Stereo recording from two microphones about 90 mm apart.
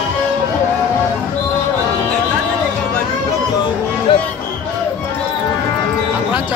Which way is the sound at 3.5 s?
55° left (ahead or behind).